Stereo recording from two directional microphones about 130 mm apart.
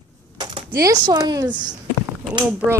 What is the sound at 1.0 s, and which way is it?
Speech, 30° right (ahead or behind).